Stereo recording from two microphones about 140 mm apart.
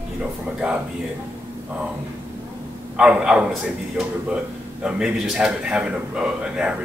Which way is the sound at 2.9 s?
5° right (ahead or behind).